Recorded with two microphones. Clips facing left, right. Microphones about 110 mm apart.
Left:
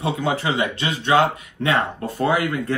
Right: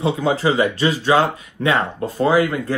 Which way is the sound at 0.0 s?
30° right (ahead or behind).